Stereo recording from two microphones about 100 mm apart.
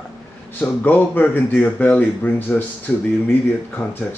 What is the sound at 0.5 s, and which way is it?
Speech, 20° left (ahead or behind).